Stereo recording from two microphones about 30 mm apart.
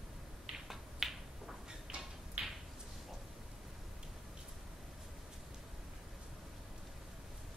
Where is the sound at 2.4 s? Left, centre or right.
Right.